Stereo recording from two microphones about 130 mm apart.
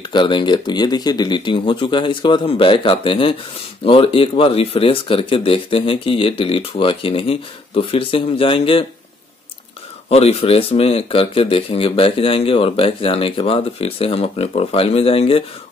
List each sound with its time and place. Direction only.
0.1 s speech: 40° left (ahead or behind)
10.0 s speech: 50° left (ahead or behind)